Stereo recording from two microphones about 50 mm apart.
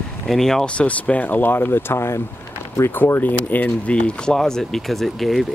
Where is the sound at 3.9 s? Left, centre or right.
Left.